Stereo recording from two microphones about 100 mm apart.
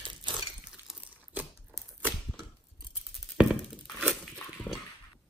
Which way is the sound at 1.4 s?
15° right (ahead or behind).